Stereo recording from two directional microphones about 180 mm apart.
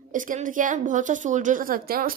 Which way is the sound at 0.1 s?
45° right (ahead or behind).